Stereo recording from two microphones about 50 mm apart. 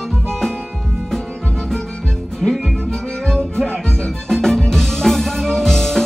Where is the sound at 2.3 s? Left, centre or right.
Centre.